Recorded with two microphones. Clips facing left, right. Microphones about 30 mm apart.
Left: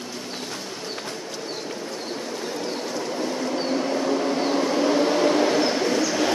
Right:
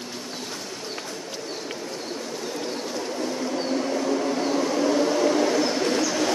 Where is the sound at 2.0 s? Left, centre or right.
Centre.